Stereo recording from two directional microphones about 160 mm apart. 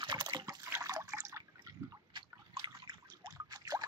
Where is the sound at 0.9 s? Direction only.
25° right (ahead or behind).